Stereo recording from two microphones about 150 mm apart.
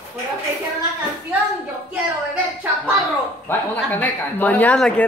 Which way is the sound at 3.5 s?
10° left (ahead or behind).